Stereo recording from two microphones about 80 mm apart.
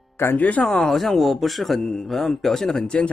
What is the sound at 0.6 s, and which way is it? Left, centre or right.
Speech, centre.